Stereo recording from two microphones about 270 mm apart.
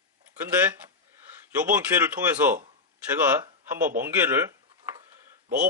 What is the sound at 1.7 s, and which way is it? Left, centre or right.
Speech, centre.